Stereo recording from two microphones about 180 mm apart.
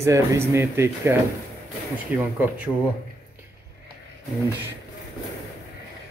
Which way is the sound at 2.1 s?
10° right (ahead or behind).